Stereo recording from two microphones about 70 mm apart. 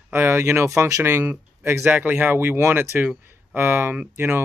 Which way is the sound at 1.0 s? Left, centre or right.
Right.